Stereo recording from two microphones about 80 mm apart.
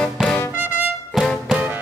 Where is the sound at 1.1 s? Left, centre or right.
Centre.